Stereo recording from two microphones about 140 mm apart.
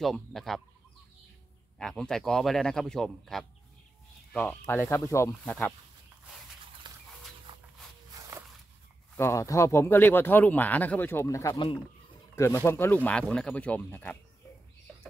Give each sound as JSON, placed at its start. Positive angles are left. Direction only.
{"t": 0.0, "sound": "speech", "side_deg": 0}
{"t": 1.8, "sound": "speech", "side_deg": 5}
{"t": 6.8, "sound": "dog", "side_deg": -30}
{"t": 7.5, "sound": "a sound", "side_deg": -35}
{"t": 8.1, "sound": "walk", "side_deg": -25}
{"t": 9.1, "sound": "speech", "side_deg": 20}